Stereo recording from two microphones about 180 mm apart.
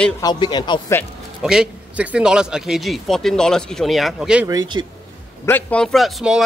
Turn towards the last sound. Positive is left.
turn(degrees=0)  # may be behind; listen again after turning